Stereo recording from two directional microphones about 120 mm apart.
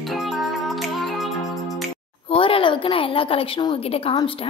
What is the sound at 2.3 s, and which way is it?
A woman's voice, 50° left (ahead or behind).